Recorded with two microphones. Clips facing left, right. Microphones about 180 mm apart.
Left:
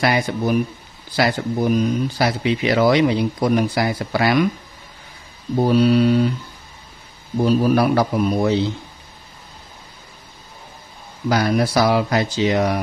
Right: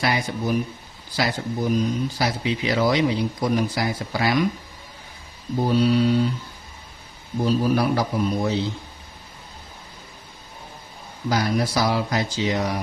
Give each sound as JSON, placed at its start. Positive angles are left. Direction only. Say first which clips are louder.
{"t": 0.0, "sound": "speech", "louder": "left 5 dB", "side_deg": 60}
{"t": 5.7, "sound": "speech", "louder": "left 4 dB", "side_deg": 65}
{"t": 7.4, "sound": "speech", "louder": "left 4 dB", "side_deg": 65}
{"t": 11.2, "sound": "speech", "louder": "left 4 dB", "side_deg": 65}